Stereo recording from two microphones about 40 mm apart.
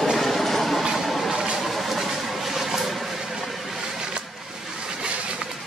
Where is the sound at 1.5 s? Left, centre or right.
Centre.